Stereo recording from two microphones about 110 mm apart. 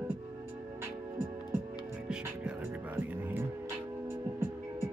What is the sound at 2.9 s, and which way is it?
Music, 20° right (ahead or behind).